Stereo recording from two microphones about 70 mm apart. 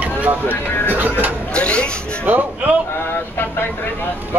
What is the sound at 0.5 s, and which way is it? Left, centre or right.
Speech, left.